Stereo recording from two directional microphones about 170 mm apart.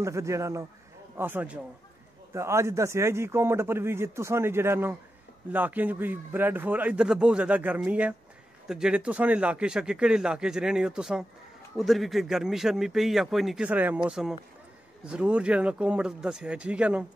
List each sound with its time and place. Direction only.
0.0 s a man's voice: 15° right (ahead or behind)